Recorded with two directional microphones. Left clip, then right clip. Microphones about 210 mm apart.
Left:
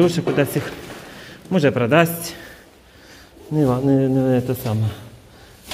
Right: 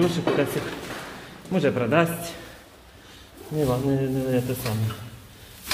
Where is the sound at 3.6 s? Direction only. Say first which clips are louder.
Left 6 dB; 35° left (ahead or behind).